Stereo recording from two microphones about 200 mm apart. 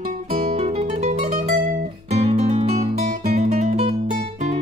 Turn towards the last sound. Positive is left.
turn(degrees=-35)  # may be behind; listen again after turning